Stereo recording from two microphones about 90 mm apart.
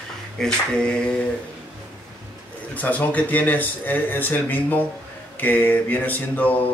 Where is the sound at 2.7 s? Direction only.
15° left (ahead or behind).